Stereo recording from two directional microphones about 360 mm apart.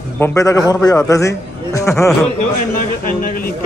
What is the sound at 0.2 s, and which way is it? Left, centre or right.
A man's voice, centre.